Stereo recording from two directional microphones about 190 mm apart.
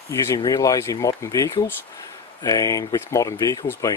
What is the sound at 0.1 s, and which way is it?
Speech, 20° left (ahead or behind).